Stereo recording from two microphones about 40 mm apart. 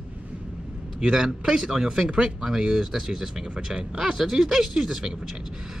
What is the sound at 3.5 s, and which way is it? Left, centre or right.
Speech, right.